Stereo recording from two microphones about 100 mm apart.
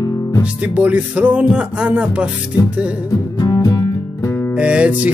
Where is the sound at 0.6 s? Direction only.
15° right (ahead or behind).